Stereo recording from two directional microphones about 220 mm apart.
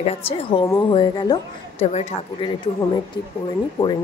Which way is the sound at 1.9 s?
30° left (ahead or behind).